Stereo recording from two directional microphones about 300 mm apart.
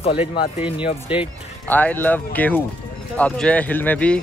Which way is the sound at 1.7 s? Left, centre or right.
Centre.